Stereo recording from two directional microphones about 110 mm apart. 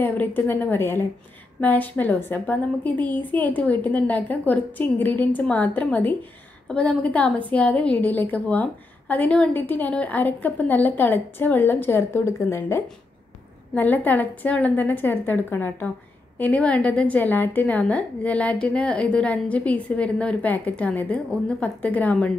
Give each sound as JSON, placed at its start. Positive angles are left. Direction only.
{"t": 0.0, "sound": "a woman's voice", "side_deg": 15}